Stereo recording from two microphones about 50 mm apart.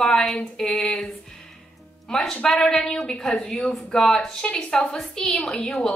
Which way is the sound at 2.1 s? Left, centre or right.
Centre.